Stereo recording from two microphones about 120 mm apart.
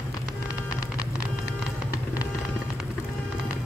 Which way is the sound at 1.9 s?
30° left (ahead or behind).